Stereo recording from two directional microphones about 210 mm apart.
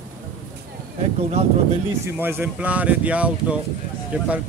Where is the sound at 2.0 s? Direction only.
10° right (ahead or behind).